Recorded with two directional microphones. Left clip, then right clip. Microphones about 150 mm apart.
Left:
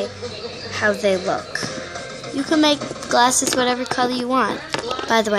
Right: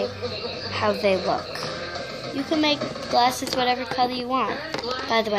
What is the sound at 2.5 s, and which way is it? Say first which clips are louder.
A woman's voice: left 5 dB; 35° left (ahead or behind).